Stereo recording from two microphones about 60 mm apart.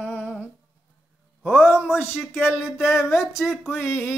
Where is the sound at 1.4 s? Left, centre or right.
Centre.